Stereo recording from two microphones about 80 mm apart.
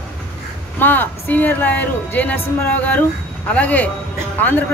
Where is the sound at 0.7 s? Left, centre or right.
Left.